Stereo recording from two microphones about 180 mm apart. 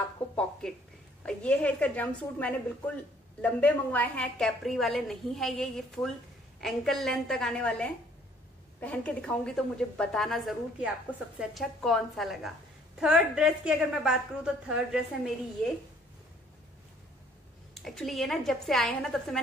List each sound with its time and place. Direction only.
0.4 s a woman's voice: 5° left (ahead or behind)
17.8 s a woman's voice: centre (ahead or behind)